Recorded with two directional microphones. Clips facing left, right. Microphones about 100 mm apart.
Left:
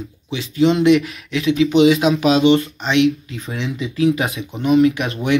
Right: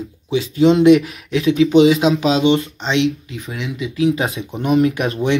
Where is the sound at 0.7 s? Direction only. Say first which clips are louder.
Right 3 dB; 30° right (ahead or behind).